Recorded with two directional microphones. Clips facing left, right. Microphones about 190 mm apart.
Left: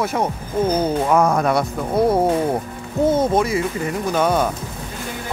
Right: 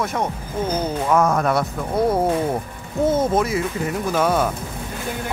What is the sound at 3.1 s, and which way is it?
Speech, centre (ahead or behind).